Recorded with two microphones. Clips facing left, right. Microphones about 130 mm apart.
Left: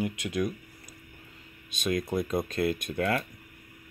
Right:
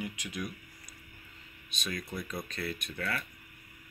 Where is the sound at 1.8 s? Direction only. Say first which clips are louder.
Left 10 dB; 50° left (ahead or behind).